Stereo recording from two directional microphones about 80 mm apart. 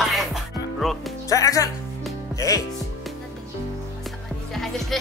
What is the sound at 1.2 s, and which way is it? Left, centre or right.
Speech, left.